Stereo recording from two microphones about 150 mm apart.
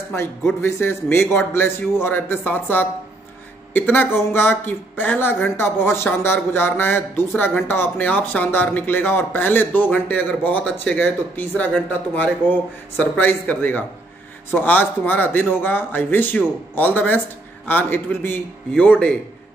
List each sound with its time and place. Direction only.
0.1 s speech: 15° left (ahead or behind)